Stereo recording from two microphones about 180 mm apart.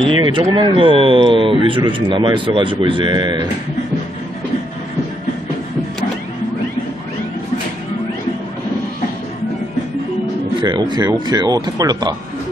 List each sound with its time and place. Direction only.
0.2 s speech: 25° right (ahead or behind)
10.6 s speech: 25° right (ahead or behind)